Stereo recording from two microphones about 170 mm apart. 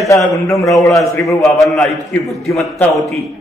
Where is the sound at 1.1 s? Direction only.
20° left (ahead or behind).